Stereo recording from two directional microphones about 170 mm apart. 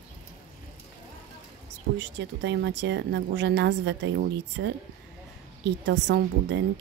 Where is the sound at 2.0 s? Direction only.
90° right.